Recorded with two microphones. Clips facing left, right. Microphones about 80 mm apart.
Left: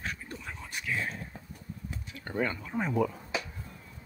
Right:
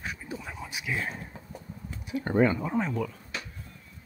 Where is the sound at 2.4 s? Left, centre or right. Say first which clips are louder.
Right 8 dB; centre.